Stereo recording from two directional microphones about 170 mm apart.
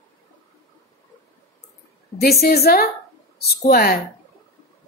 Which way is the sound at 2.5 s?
60° left (ahead or behind).